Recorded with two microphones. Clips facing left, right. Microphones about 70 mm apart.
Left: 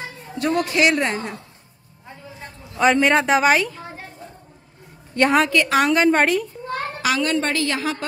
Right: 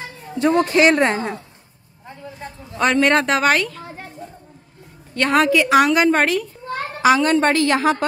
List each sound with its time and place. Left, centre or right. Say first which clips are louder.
0.4 s a woman's voice: right 4 dB; right
2.3 s speech: right 1 dB; centre
5.2 s a woman's voice: left 3 dB; left
5.5 s a woman's voice: right 4 dB; centre
5.9 s a woman's voice: right 1 dB; centre
7.0 s a woman's voice: right 7 dB; right